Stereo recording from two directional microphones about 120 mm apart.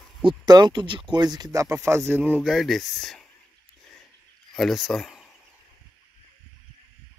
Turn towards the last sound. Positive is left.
turn(degrees=0)  # may be behind; listen again after turning